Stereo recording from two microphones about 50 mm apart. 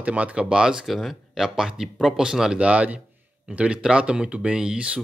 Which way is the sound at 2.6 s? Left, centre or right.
Right.